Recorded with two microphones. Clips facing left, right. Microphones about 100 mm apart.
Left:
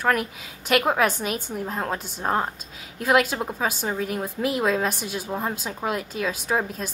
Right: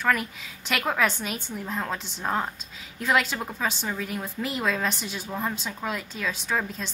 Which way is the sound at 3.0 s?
50° left (ahead or behind).